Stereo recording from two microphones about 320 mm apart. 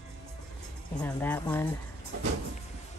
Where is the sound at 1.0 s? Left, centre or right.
Centre.